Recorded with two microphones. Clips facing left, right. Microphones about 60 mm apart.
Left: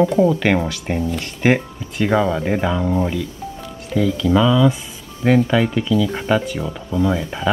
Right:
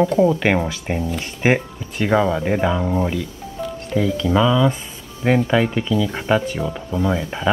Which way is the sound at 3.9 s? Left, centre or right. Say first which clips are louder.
Left 2 dB; centre.